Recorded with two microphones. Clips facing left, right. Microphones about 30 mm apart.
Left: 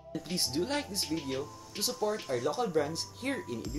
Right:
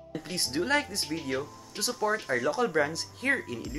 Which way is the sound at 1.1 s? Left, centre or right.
Centre.